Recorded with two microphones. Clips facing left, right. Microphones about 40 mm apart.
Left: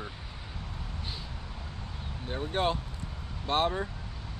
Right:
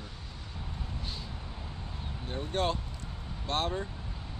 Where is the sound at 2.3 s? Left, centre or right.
Centre.